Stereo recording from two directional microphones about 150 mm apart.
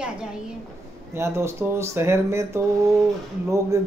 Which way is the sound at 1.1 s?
20° right (ahead or behind).